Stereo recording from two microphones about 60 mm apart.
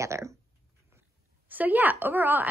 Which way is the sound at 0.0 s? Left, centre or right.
Right.